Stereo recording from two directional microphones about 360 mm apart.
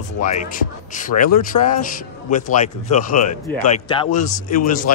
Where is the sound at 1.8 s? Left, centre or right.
Left.